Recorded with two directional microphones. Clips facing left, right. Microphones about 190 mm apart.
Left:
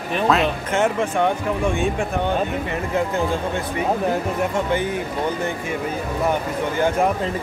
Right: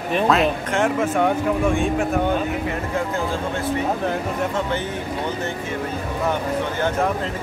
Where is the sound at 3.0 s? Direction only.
15° left (ahead or behind).